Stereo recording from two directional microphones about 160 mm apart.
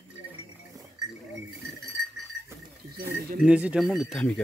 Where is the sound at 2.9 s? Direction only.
65° right (ahead or behind).